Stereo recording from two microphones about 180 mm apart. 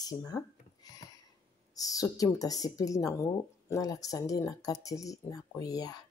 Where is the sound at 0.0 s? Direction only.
20° left (ahead or behind).